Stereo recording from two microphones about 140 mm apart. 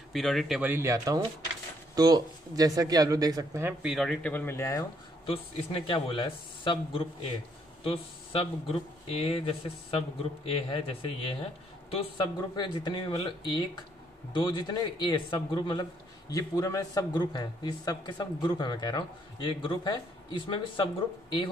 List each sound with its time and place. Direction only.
0.1 s speech: centre (ahead or behind)
0.6 s speech: 15° right (ahead or behind)
3.8 s speech: centre (ahead or behind)
4.3 s speech: 15° left (ahead or behind)
5.2 s a man's voice: 40° left (ahead or behind)